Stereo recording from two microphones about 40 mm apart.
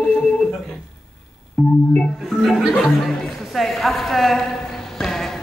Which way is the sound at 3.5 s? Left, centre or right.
Centre.